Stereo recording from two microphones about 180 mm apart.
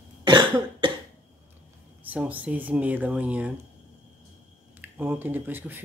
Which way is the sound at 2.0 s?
10° right (ahead or behind).